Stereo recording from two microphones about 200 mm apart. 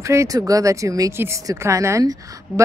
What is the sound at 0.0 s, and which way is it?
Speech, 15° right (ahead or behind).